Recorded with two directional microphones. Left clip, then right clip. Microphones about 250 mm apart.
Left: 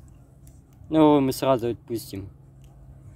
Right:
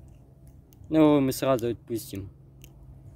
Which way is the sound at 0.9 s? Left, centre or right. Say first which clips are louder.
Left 3 dB; centre.